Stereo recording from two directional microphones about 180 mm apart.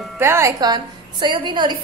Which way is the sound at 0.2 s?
15° right (ahead or behind).